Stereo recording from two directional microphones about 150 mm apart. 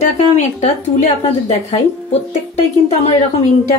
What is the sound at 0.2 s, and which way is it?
A woman's voice, 50° left (ahead or behind).